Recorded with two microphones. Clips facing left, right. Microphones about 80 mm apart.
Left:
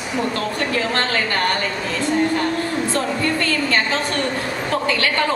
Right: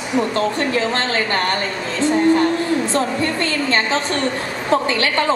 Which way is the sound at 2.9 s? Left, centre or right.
Right.